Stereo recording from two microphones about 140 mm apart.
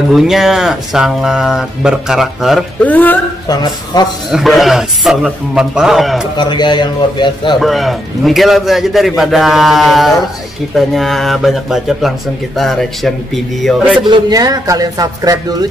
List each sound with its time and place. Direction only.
0.1 s a man's voice: 5° right (ahead or behind)
2.8 s a man's voice: 10° left (ahead or behind)
3.4 s speech: 30° left (ahead or behind)
4.3 s a man's voice: centre (ahead or behind)
6.3 s a man's voice: 30° left (ahead or behind)
7.6 s a man's voice: centre (ahead or behind)
13.9 s speech: 35° right (ahead or behind)